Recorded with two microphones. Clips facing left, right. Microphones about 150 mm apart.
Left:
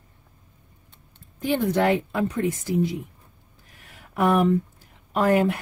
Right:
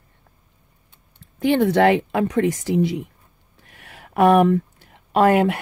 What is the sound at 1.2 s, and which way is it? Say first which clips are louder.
Speech: right 6 dB; 75° right (ahead or behind).